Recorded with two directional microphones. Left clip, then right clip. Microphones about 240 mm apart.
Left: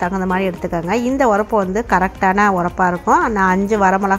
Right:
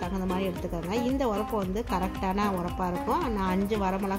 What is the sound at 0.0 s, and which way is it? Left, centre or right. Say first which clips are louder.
Speech: left 13 dB; left.